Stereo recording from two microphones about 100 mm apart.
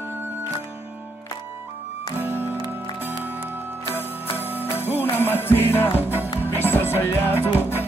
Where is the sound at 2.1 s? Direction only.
20° right (ahead or behind).